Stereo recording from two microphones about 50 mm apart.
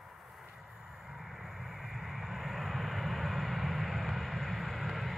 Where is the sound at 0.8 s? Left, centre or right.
Centre.